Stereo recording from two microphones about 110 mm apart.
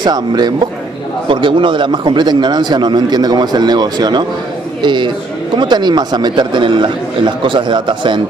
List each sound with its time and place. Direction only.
0.0 s a man's voice: 40° right (ahead or behind)